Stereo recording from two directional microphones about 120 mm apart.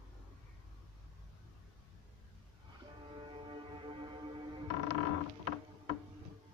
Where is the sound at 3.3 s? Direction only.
45° right (ahead or behind).